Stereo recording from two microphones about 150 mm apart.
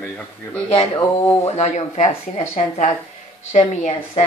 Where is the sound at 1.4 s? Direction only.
50° left (ahead or behind).